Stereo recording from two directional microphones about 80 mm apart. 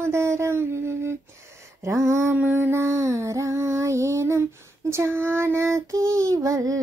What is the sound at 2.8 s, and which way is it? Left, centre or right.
Female singing, right.